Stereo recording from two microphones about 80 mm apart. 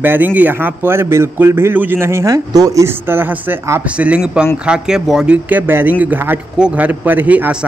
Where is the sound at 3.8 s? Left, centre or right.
Centre.